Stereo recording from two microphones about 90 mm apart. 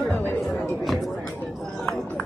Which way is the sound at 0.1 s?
25° left (ahead or behind).